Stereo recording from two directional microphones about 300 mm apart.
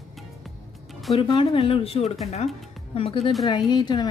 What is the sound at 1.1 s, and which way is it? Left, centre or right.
Speech, centre.